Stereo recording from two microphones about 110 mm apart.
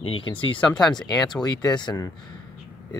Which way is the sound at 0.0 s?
50° left (ahead or behind).